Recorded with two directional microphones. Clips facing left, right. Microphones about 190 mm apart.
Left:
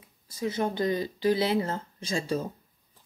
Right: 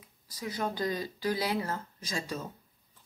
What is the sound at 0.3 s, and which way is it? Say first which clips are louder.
Speech: left 6 dB; 25° left (ahead or behind).